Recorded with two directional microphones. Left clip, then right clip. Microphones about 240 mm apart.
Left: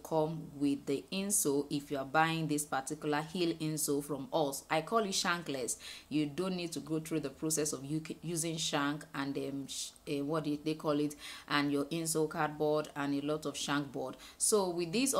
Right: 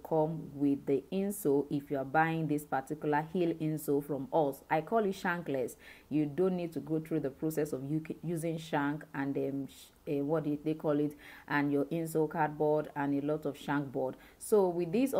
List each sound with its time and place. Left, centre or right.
0.1 s speech: centre